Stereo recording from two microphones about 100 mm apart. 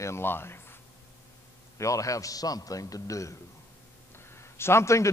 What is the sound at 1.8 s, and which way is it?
A man's voice, 35° left (ahead or behind).